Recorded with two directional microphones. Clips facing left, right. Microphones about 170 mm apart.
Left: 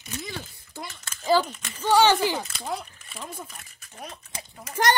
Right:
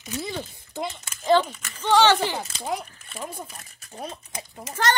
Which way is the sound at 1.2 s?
Centre (ahead or behind).